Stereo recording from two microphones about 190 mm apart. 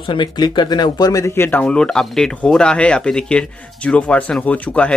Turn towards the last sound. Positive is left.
turn(degrees=5)  # may be behind; listen again after turning